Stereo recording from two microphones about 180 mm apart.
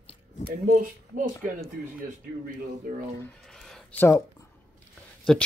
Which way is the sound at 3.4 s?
Centre (ahead or behind).